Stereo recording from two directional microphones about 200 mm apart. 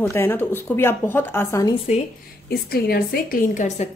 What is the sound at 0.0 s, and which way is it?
A woman's voice, 10° left (ahead or behind).